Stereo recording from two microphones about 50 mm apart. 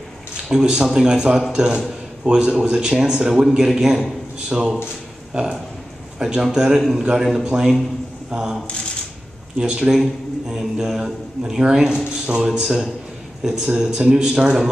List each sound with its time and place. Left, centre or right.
0.5 s a man's voice: centre
3.4 s a man's voice: centre
9.6 s a man's voice: right
10.5 s a man's voice: centre